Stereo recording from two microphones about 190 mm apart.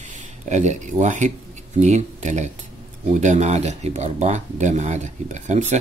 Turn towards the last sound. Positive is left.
turn(degrees=-40)  # may be behind; listen again after turning